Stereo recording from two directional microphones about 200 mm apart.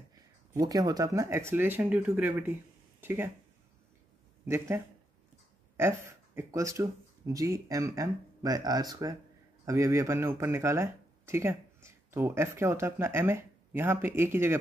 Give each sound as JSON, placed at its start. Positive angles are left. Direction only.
{"t": 0.5, "sound": "speech", "side_deg": -20}
{"t": 3.0, "sound": "a sound", "side_deg": -10}
{"t": 4.5, "sound": "speech", "side_deg": -15}